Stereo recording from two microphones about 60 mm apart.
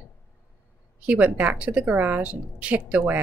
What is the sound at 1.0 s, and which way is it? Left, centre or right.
A woman's voice, right.